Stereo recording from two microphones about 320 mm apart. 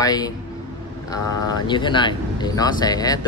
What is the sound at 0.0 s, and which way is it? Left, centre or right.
Speech, centre.